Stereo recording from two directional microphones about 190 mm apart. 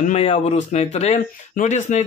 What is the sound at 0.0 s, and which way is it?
Speech, 35° left (ahead or behind).